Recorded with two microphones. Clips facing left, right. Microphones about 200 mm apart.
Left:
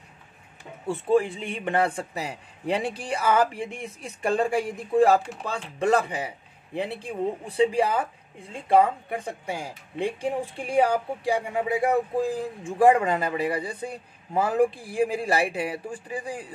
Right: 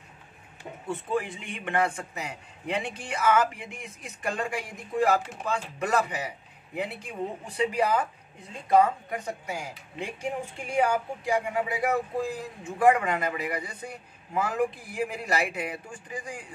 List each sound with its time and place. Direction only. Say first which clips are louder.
0.8 s a man's voice: left 8 dB; 30° left (ahead or behind)